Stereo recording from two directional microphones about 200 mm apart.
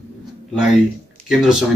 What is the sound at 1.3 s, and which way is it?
Speech, centre (ahead or behind).